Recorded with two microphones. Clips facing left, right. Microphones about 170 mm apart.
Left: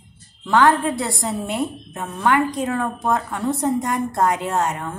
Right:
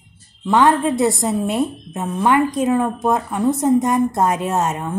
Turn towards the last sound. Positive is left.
turn(degrees=-20)  # may be behind; listen again after turning